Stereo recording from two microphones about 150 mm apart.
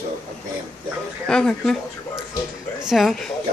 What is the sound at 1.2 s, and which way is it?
Speech, 5° left (ahead or behind).